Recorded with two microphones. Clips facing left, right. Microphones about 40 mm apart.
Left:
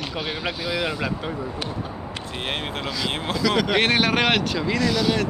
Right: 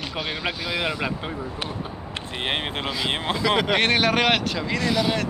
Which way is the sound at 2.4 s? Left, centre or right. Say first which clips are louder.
Right 2 dB; right.